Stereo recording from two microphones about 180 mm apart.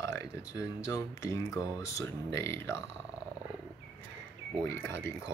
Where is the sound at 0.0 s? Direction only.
15° left (ahead or behind).